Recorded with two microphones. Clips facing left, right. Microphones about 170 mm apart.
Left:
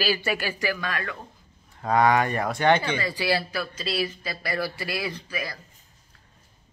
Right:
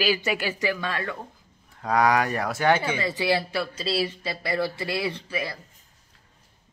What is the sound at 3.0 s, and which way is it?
Speech, 20° right (ahead or behind).